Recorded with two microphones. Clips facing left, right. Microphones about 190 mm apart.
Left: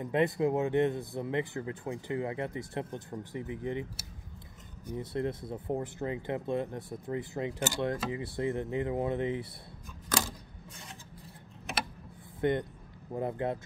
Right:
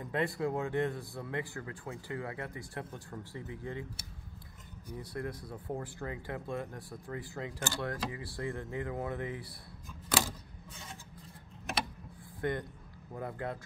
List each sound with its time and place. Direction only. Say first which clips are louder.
0.0 s speech: left 5 dB; 20° left (ahead or behind)
4.9 s speech: left 6 dB; 25° left (ahead or behind)
12.4 s speech: left 6 dB; 20° left (ahead or behind)